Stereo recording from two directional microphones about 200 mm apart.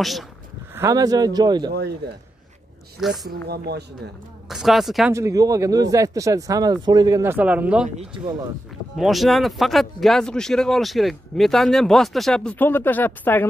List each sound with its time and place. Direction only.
0.0 s speech: centre (ahead or behind)
0.7 s speech: 15° right (ahead or behind)
1.7 s speech: 55° right (ahead or behind)
3.3 s speech: 50° right (ahead or behind)
4.5 s speech: centre (ahead or behind)
5.1 s speech: 15° right (ahead or behind)
7.9 s speech: 30° right (ahead or behind)
8.9 s speech: centre (ahead or behind)